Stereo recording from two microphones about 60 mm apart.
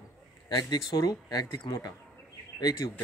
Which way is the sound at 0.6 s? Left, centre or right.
Left.